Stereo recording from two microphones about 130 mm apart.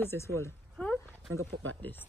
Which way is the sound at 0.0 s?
20° left (ahead or behind).